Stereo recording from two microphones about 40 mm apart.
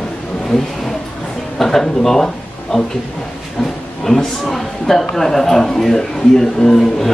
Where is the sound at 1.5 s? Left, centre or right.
Centre.